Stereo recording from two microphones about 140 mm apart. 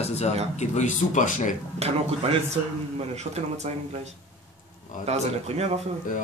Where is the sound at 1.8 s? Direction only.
45° right (ahead or behind).